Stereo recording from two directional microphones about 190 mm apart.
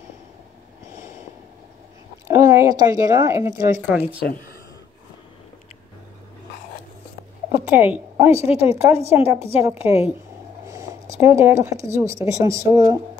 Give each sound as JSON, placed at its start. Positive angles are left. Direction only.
{"t": 2.2, "sound": "a woman's voice", "side_deg": -15}
{"t": 7.7, "sound": "a woman's voice", "side_deg": -10}
{"t": 11.1, "sound": "a woman's voice", "side_deg": -10}